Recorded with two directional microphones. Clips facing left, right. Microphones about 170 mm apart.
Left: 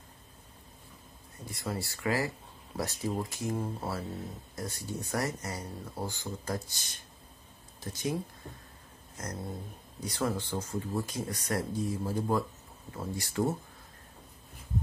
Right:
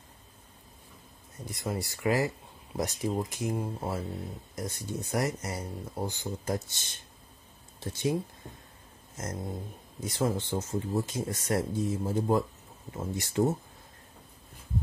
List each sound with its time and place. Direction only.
1.5 s speech: 20° right (ahead or behind)
9.1 s a sound: 20° right (ahead or behind)
9.9 s speech: 25° right (ahead or behind)